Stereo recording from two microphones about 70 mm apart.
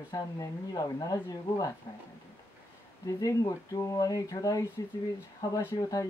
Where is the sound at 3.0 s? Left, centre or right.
Left.